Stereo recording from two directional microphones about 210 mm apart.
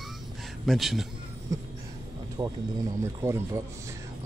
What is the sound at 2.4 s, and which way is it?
Speech, 20° right (ahead or behind).